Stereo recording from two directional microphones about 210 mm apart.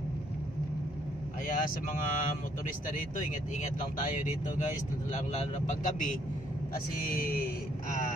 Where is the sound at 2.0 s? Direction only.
40° left (ahead or behind).